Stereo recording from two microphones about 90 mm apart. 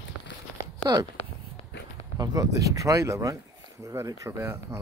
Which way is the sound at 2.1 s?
45° right (ahead or behind).